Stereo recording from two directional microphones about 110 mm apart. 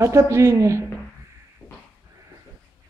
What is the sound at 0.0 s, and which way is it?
Speech, 25° right (ahead or behind).